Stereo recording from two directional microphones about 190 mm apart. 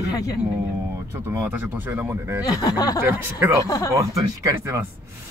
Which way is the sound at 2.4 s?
20° left (ahead or behind).